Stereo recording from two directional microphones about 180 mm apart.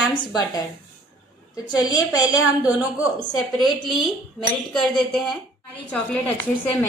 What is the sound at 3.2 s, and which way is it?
Speech, centre (ahead or behind).